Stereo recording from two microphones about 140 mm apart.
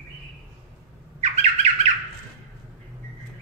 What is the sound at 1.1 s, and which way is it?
Squawk, 50° right (ahead or behind).